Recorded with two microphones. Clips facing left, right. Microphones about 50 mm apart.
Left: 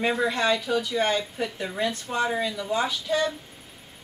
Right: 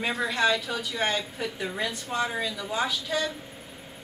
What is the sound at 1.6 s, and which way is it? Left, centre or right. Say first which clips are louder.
Speech: left 3 dB; centre.